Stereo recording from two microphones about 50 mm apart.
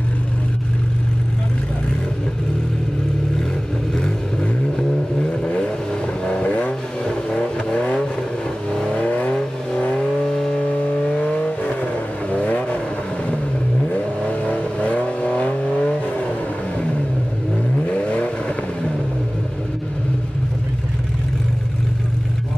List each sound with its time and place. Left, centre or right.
3.9 s vehicle: centre
10.2 s vehicle: centre; by 12.7 s left
14.3 s vehicle: left
17.8 s vehicle: left